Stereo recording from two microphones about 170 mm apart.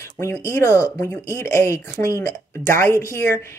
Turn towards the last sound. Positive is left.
turn(degrees=15)  # may be behind; listen again after turning